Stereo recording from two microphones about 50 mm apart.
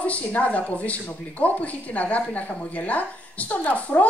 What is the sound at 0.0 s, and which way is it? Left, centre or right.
Speech, left.